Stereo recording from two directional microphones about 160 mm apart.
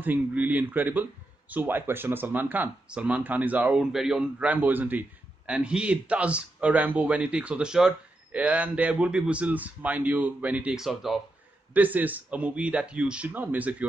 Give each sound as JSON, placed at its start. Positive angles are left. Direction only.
{"t": 0.0, "sound": "a man's voice", "side_deg": -10}